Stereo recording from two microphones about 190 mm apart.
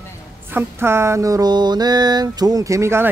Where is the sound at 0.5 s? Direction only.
10° right (ahead or behind).